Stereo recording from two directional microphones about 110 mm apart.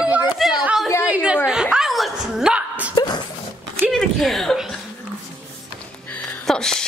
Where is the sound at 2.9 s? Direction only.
40° left (ahead or behind).